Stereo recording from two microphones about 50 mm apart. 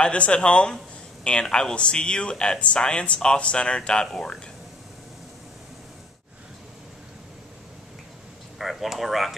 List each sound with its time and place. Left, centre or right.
0.0 s speech: left
8.5 s speech: centre